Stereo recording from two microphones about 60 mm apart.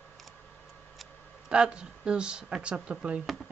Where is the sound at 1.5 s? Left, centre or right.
Centre.